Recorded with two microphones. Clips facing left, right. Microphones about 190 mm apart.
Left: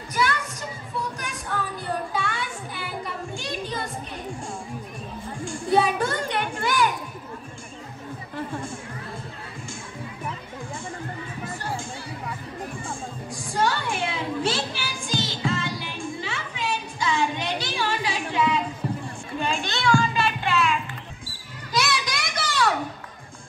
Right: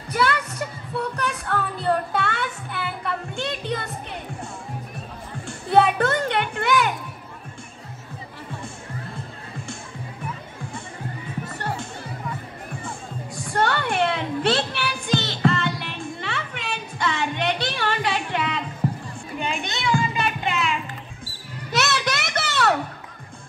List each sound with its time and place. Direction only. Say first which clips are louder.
0.1 s music: right 3 dB; 65° right (ahead or behind)
5.4 s music: right 3 dB; 60° right (ahead or behind)
11.6 s music: right 2 dB; 65° right (ahead or behind)
13.4 s music: right 2 dB; 65° right (ahead or behind)
19.4 s a sound: left 2 dB; 20° right (ahead or behind)
21.7 s music: right 2 dB; 65° right (ahead or behind)